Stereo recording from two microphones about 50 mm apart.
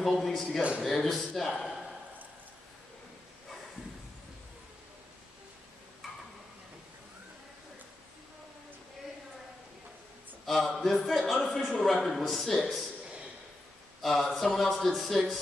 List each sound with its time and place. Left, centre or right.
0.0 s a man's voice: centre
0.6 s speech: right
0.8 s a man's voice: centre
10.4 s a man's voice: centre
14.0 s a man's voice: centre